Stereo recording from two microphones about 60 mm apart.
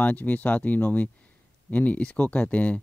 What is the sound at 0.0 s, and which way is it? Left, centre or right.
Speech, left.